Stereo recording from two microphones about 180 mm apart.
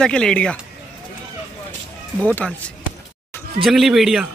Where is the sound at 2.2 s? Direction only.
10° left (ahead or behind).